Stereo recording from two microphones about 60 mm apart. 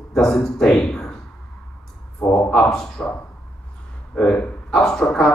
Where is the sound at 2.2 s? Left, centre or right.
Left.